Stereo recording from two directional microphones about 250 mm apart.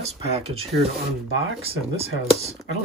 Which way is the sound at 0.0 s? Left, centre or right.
Right.